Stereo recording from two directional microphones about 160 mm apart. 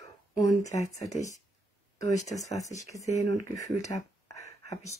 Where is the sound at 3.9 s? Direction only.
25° left (ahead or behind).